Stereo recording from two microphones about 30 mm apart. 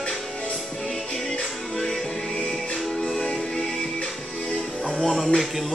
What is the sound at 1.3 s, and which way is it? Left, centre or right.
Music, left.